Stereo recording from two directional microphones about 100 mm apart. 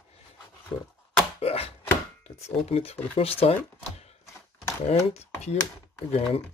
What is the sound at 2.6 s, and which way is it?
Speech, 85° left.